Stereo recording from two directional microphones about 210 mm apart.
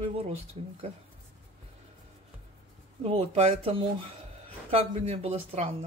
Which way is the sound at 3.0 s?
30° right (ahead or behind).